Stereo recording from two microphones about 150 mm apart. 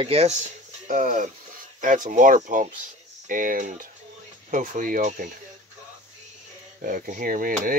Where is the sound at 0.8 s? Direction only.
55° right (ahead or behind).